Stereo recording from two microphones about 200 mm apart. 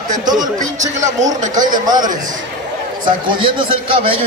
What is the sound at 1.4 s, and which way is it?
Speech, 40° right (ahead or behind).